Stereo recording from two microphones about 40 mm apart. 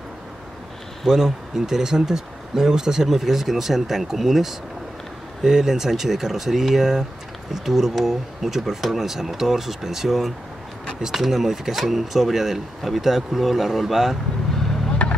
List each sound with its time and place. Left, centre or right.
1.0 s speech: centre
14.9 s vehicle: left